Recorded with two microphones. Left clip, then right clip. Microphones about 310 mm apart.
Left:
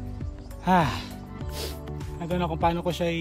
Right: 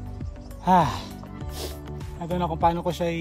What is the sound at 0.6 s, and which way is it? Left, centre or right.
Speech, centre.